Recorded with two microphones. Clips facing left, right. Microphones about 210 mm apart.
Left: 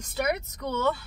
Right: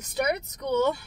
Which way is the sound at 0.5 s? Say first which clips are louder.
Right 6 dB; 15° right (ahead or behind).